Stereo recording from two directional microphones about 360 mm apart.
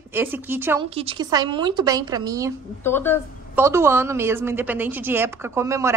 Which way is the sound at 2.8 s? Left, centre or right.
Centre.